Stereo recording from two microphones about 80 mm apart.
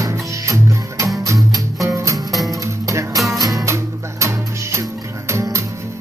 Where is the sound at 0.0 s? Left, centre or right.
Right.